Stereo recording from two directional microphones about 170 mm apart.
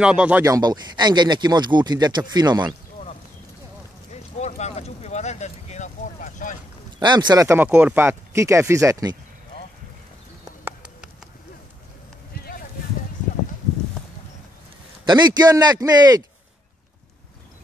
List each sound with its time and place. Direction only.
0.0 s speech: 5° right (ahead or behind)
0.5 s speech: 25° right (ahead or behind)
4.1 s a sound: 40° left (ahead or behind)
7.0 s speech: 25° right (ahead or behind)
15.0 s speech: 25° right (ahead or behind)